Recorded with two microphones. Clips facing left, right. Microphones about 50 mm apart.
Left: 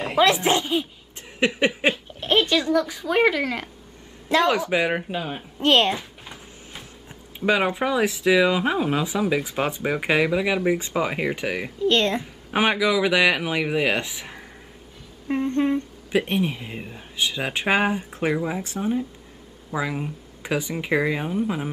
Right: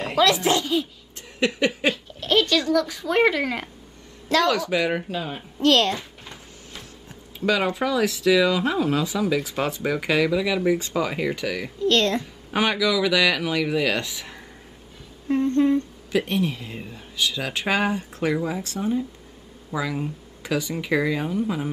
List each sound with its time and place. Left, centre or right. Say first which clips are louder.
0.2 s speech: left 1 dB; left; by 3.7 s centre
4.3 s speech: left 1 dB; left
5.6 s speech: even; left